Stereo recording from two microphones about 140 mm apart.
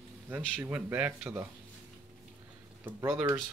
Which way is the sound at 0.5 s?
15° right (ahead or behind).